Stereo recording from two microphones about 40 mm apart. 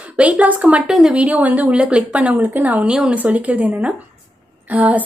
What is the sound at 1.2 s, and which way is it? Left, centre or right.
Speech, right.